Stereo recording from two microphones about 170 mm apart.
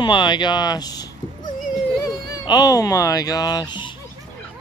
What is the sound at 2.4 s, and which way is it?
Speech, 25° left (ahead or behind).